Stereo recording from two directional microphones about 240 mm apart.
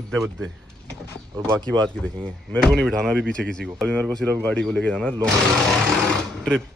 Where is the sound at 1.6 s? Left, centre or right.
Centre.